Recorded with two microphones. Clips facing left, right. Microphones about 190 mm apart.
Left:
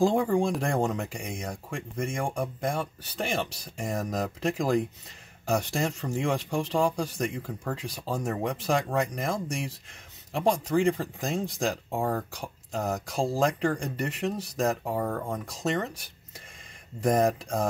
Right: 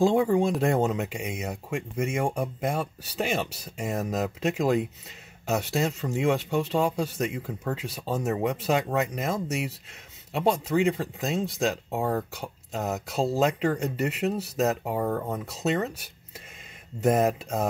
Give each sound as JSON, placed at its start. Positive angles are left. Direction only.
{"t": 0.0, "sound": "speech", "side_deg": 0}
{"t": 10.9, "sound": "speech", "side_deg": -5}